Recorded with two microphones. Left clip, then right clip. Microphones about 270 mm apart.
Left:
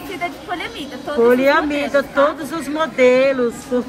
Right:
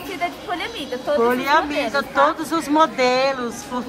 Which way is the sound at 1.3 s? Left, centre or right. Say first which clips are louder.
Left 8 dB; centre.